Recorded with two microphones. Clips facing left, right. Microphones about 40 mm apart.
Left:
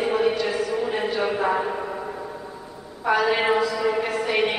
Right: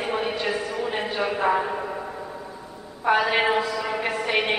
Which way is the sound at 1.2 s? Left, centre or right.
Centre.